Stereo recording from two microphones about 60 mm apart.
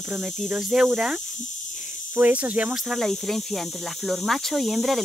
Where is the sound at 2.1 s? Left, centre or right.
Right.